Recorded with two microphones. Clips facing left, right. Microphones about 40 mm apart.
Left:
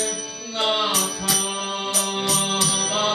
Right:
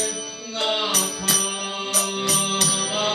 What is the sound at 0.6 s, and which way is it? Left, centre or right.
Music, centre.